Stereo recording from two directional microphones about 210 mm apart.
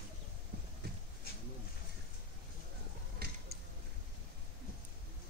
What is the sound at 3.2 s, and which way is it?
Creak, 50° right (ahead or behind).